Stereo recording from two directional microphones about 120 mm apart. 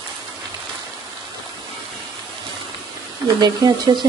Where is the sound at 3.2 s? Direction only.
35° right (ahead or behind).